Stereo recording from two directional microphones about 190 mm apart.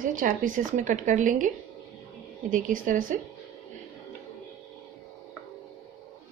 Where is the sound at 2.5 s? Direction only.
45° right (ahead or behind).